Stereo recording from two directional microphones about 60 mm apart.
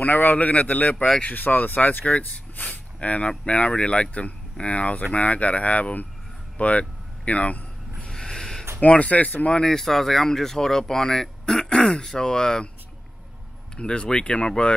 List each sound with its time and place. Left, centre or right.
0.0 s speech: left
8.0 s a sound: centre
8.8 s speech: left
9.7 s speech: centre
13.7 s speech: centre